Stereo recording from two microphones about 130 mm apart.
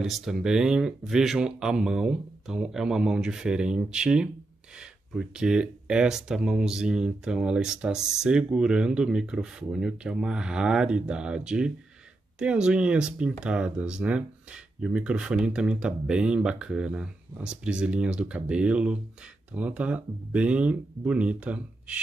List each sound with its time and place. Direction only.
0.0 s speech: 5° right (ahead or behind)